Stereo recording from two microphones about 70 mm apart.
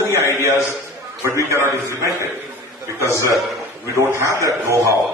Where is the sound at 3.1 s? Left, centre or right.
Left.